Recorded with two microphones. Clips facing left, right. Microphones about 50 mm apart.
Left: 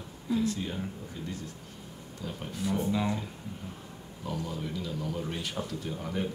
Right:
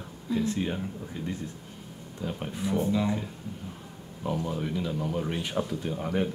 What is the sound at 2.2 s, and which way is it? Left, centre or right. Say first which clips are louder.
Speech: right 3 dB; right.